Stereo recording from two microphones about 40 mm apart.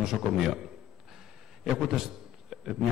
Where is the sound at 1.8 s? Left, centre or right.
Centre.